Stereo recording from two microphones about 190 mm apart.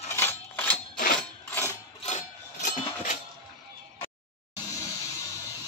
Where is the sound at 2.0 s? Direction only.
40° left (ahead or behind).